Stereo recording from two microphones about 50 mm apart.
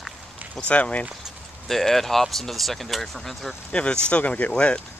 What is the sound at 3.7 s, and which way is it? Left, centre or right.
Speech, left.